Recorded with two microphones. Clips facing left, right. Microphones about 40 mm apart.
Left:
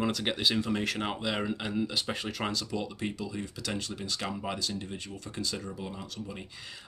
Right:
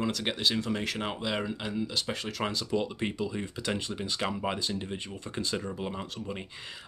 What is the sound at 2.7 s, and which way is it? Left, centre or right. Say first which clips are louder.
Speech: right 4 dB; right.